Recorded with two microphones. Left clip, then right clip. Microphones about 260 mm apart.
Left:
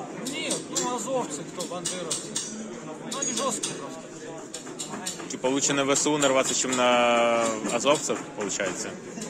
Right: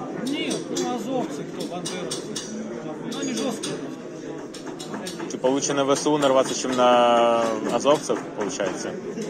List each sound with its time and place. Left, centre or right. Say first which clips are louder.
5.4 s speech: right 3 dB; left